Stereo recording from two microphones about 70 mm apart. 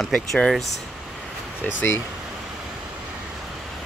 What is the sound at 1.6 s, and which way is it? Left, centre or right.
Speech, left.